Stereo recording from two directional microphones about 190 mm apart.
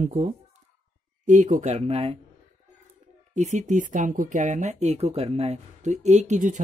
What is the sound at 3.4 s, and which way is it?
Speech, 40° right (ahead or behind).